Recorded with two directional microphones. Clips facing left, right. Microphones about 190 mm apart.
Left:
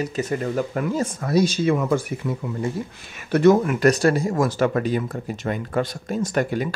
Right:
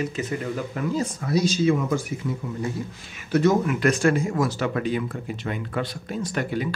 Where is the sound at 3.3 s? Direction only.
60° left (ahead or behind).